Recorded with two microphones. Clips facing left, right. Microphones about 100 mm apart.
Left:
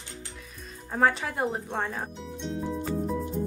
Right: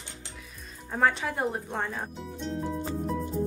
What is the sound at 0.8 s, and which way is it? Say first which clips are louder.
A woman's voice: left 1 dB; centre (ahead or behind).